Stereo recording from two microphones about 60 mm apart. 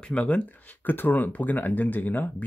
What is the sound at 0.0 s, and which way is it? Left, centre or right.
Speech, left.